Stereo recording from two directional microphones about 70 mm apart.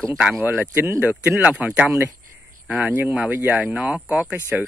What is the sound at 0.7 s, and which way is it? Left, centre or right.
Speech, right.